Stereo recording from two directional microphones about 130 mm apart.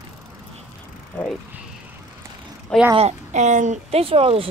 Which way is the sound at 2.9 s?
60° right (ahead or behind).